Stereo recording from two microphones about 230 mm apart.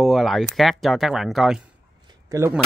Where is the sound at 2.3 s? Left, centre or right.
Centre.